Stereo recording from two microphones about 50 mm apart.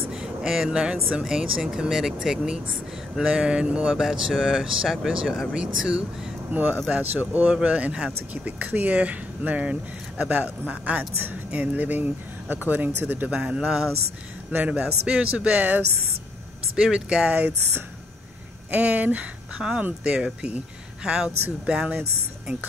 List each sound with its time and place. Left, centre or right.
0.1 s a sound: centre
1.2 s speech: centre
3.9 s speech: centre
5.5 s speech: centre
6.5 s speech: right
13.3 s speech: centre
14.5 s speech: right
14.8 s speech: centre
16.7 s speech: centre
18.7 s speech: right
19.6 s speech: centre